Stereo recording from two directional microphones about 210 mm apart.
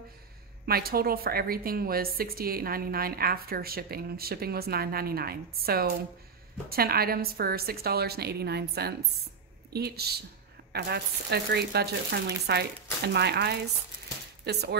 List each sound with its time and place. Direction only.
0.7 s a woman's voice: 45° right (ahead or behind)